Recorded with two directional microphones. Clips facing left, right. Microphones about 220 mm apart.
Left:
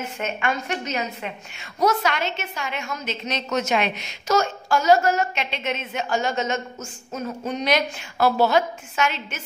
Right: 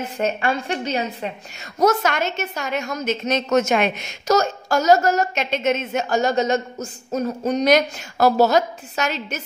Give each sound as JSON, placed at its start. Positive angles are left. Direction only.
{"t": 0.2, "sound": "a woman's voice", "side_deg": -35}
{"t": 1.8, "sound": "a woman's voice", "side_deg": -45}